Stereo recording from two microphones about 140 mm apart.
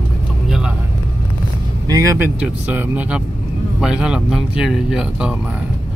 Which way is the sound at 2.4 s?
10° right (ahead or behind).